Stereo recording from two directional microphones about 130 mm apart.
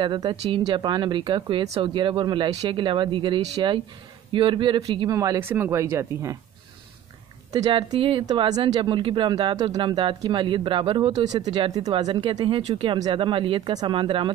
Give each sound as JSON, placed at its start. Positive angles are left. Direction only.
{"t": 0.0, "sound": "speech", "side_deg": -35}
{"t": 7.5, "sound": "speech", "side_deg": -30}